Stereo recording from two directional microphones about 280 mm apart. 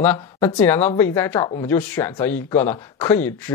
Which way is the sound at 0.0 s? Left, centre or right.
Centre.